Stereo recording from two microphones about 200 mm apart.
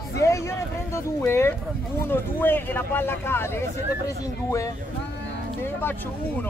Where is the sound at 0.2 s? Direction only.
15° left (ahead or behind).